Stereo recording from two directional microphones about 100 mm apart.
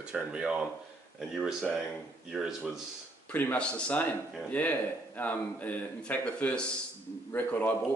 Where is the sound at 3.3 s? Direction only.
15° left (ahead or behind).